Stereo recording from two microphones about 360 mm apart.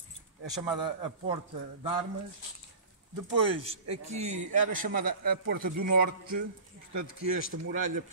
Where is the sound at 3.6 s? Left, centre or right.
Centre.